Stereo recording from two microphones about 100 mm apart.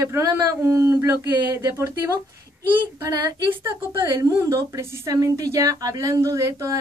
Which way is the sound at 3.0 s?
35° right (ahead or behind).